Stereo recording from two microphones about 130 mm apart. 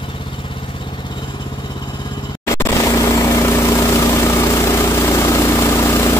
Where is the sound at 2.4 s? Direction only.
20° left (ahead or behind).